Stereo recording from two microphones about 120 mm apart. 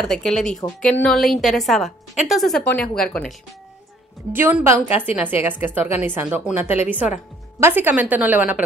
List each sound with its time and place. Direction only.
0.0 s a woman's voice: 5° left (ahead or behind)
2.6 s speech: 15° left (ahead or behind)
4.3 s a woman's voice: 15° right (ahead or behind)